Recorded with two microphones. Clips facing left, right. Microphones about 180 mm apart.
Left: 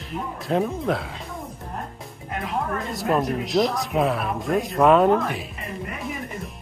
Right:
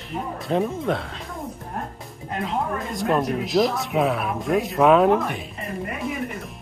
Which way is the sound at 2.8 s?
Centre (ahead or behind).